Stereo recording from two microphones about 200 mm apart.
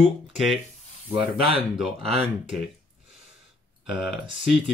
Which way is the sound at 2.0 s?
30° right (ahead or behind).